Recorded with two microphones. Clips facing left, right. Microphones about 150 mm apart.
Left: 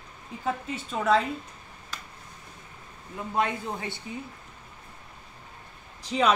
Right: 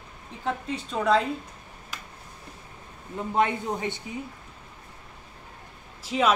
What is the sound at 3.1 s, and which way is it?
Speech, 20° right (ahead or behind).